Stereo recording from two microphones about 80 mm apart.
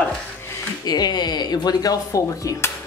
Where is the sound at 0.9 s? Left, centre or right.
Left.